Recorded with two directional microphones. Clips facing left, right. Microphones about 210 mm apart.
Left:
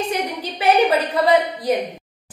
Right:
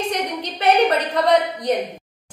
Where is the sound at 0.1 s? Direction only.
5° left (ahead or behind).